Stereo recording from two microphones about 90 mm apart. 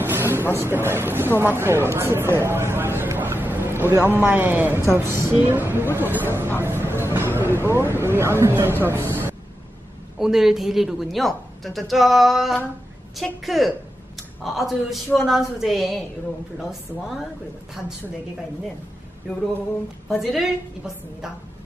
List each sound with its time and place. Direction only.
0.0 s a sound: 25° right (ahead or behind)
0.6 s speech: 25° right (ahead or behind)
6.6 s a sound: 25° right (ahead or behind)
7.3 s speech: 25° right (ahead or behind)
10.1 s a woman's voice: 5° right (ahead or behind)
20.1 s a woman's voice: centre (ahead or behind)